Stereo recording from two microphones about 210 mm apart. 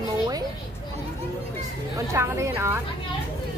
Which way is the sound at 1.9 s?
15° right (ahead or behind).